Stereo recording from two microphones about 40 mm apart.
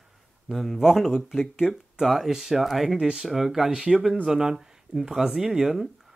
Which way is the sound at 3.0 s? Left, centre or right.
Centre.